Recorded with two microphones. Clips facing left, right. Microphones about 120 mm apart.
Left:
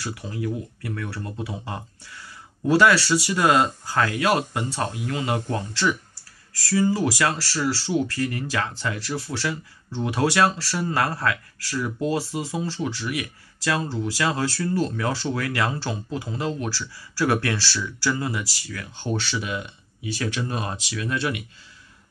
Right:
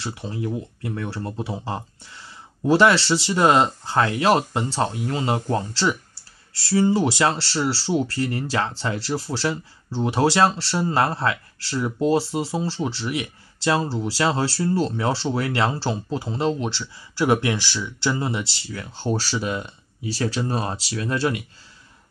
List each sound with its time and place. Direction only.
0.0 s speech: 25° right (ahead or behind)